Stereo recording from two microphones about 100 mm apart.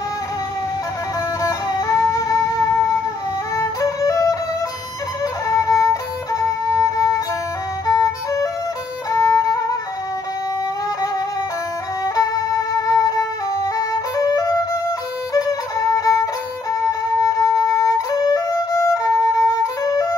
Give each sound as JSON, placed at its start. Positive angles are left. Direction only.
{"t": 1.4, "sound": "music", "side_deg": 35}
{"t": 3.5, "sound": "music", "side_deg": 35}
{"t": 5.2, "sound": "violin", "side_deg": 35}
{"t": 7.8, "sound": "music", "side_deg": 35}
{"t": 12.2, "sound": "music", "side_deg": 35}
{"t": 17.2, "sound": "music", "side_deg": 35}